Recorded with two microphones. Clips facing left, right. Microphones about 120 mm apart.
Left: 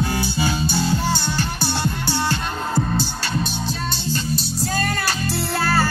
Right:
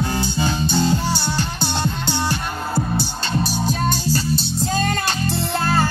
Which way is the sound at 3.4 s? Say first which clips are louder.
Right 4 dB; 40° right (ahead or behind).